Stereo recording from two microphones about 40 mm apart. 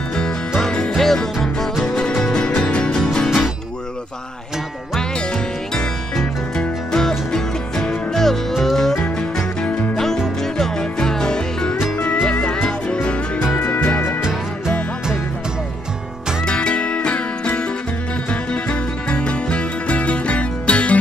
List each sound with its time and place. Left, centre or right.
0.6 s music: centre
4.9 s music: centre
10.4 s music: centre; by 14.0 s left
16.4 s music: left
18.3 s music: left